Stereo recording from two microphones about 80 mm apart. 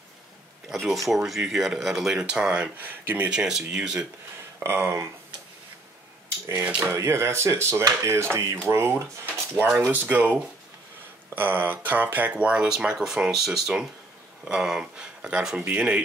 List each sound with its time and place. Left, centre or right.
1.0 s speech: centre; by 3.3 s right
3.3 s speech: centre
4.6 s speech: right
6.2 s a sound: right
6.6 s speech: centre
6.9 s speech: right
11.3 s speech: right